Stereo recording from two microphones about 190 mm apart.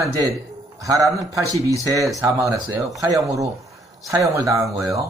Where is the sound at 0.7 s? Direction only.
15° right (ahead or behind).